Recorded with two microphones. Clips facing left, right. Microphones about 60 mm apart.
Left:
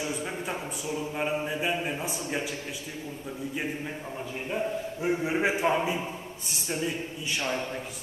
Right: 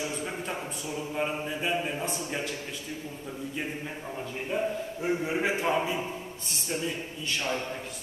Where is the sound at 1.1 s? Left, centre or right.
Centre.